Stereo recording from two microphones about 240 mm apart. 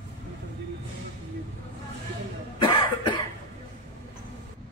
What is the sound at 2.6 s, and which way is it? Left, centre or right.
Cough, centre.